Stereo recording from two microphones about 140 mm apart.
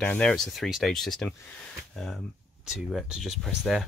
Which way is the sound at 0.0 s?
10° left (ahead or behind).